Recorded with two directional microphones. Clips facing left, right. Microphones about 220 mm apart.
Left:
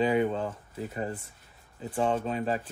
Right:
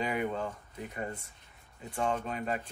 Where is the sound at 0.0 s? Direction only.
30° left (ahead or behind).